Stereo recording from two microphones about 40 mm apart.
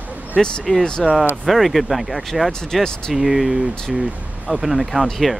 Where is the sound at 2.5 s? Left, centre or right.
Centre.